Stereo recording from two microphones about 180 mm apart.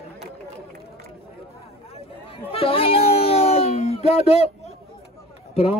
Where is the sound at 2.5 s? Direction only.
30° left (ahead or behind).